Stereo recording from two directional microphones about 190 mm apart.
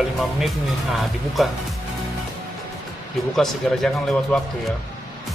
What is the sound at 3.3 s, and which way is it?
Speech, centre (ahead or behind).